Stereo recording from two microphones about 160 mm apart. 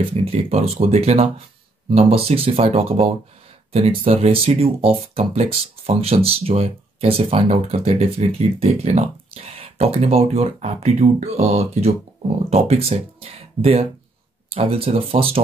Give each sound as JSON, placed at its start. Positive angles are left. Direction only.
{"t": 0.0, "sound": "speech", "side_deg": -35}